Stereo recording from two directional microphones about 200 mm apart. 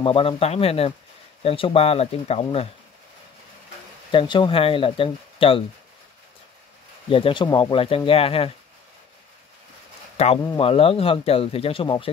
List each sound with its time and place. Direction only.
0.0 s speech: 25° left (ahead or behind)
4.1 s speech: 25° left (ahead or behind)
7.1 s speech: 25° left (ahead or behind)
10.1 s speech: 35° left (ahead or behind)